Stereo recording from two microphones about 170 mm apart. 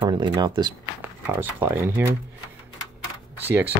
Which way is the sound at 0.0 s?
25° right (ahead or behind).